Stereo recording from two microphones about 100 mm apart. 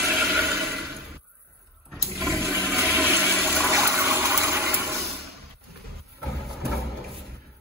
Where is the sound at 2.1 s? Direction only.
5° left (ahead or behind).